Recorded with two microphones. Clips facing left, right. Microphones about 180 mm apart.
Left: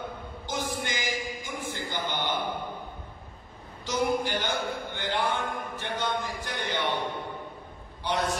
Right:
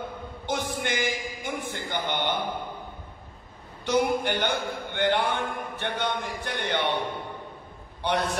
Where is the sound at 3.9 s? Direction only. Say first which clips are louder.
Right 3 dB; 60° right (ahead or behind).